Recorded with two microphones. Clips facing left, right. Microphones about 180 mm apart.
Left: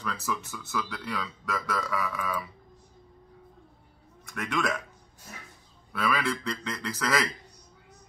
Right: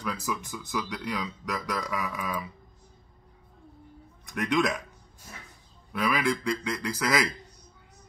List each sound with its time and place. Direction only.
0.0 s speech: 15° right (ahead or behind)
4.3 s speech: 20° right (ahead or behind)
5.9 s speech: 15° right (ahead or behind)